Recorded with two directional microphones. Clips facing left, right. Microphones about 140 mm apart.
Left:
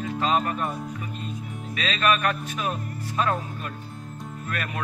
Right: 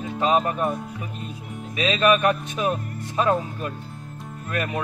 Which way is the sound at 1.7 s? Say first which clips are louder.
Right 5 dB; 20° right (ahead or behind).